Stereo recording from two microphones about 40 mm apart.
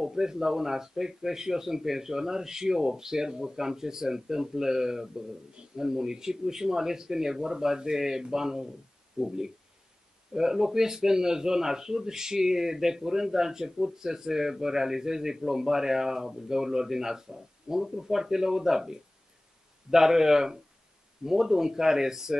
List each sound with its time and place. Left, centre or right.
0.0 s a man's voice: centre